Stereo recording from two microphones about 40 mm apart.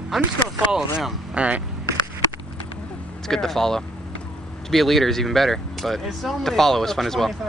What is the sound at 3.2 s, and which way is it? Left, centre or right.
Speech, centre.